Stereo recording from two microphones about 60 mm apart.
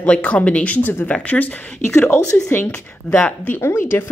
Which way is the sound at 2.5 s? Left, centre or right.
Left.